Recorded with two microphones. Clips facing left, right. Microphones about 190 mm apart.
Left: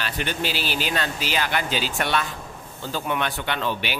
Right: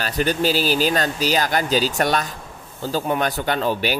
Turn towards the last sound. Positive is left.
turn(degrees=-40)  # may be behind; listen again after turning